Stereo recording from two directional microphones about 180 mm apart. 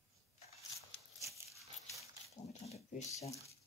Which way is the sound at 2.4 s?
40° left (ahead or behind).